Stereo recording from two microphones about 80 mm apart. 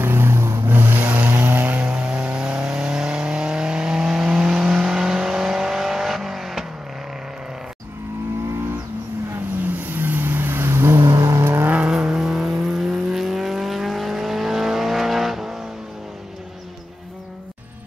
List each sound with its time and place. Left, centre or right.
0.0 s vehicle: right; by 6.6 s centre
9.7 s vehicle: right
11.9 s vehicle: centre